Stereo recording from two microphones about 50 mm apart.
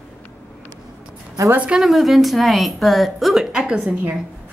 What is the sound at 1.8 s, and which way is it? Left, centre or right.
A woman's voice, centre.